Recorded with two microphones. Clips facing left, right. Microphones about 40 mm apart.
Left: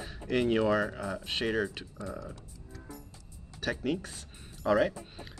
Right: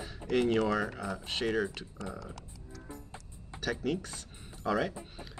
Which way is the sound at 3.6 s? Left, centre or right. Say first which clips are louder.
Left 1 dB; centre.